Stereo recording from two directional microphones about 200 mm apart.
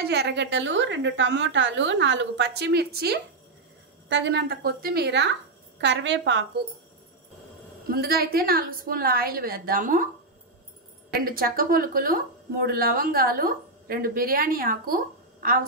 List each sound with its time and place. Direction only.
0.0 s a woman's voice: 55° right (ahead or behind)
7.9 s a woman's voice: 50° right (ahead or behind)
11.1 s a woman's voice: 45° right (ahead or behind)